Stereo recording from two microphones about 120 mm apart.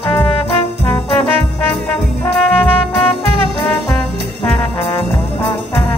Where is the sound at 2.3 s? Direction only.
5° left (ahead or behind).